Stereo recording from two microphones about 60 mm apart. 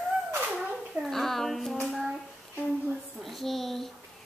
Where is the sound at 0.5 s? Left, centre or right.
Centre.